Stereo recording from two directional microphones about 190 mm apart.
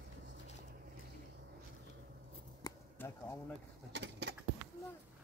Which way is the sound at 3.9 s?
65° right (ahead or behind).